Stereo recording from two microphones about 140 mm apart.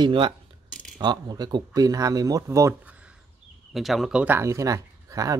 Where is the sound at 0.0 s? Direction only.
40° right (ahead or behind).